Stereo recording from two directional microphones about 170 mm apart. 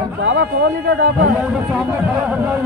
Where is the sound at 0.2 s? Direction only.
90° right.